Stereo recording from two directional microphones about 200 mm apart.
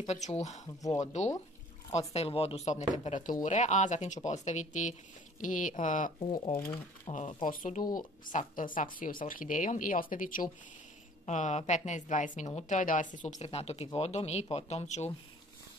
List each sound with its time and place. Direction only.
0.0 s a woman's voice: 30° left (ahead or behind)
0.7 s speech: 15° left (ahead or behind)
1.0 s a woman's voice: 35° left (ahead or behind)
6.1 s speech: 25° left (ahead or behind)
6.7 s a woman's voice: 35° left (ahead or behind)